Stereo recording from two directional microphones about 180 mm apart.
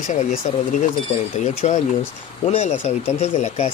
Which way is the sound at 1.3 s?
40° left (ahead or behind).